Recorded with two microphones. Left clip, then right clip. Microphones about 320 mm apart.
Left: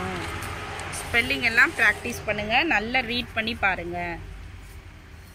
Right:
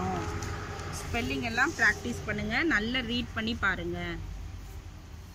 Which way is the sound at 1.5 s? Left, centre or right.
Left.